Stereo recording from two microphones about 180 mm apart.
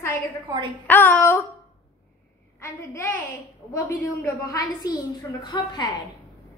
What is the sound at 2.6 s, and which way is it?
A woman's voice, 15° left (ahead or behind).